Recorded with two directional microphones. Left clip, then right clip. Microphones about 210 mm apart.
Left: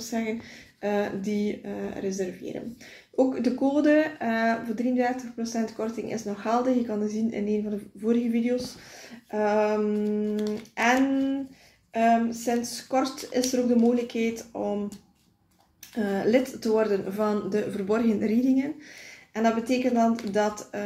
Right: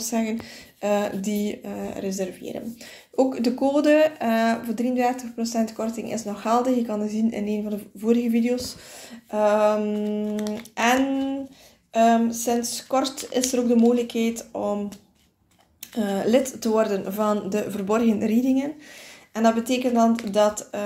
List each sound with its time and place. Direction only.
0.0 s speech: 35° right (ahead or behind)
11.9 s speech: 30° right (ahead or behind)
16.0 s speech: 30° right (ahead or behind)